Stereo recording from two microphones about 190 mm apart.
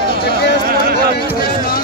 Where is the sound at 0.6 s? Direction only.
55° right (ahead or behind).